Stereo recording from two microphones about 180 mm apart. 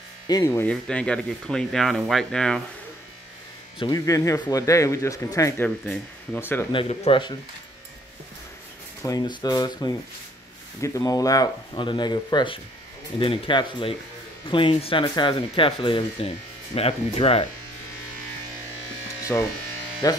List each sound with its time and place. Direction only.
0.3 s speech: 15° left (ahead or behind)
3.8 s speech: 20° left (ahead or behind)
6.7 s speech: 30° left (ahead or behind)
9.0 s speech: 20° left (ahead or behind)
19.3 s speech: 15° left (ahead or behind)